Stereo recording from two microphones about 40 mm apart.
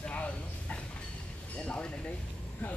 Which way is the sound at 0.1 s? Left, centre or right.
Left.